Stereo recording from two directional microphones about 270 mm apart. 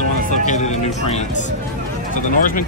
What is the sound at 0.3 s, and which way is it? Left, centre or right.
Speech, left.